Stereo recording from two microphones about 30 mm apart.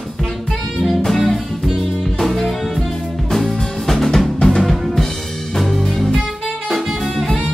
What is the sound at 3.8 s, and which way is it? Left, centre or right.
Drum, centre.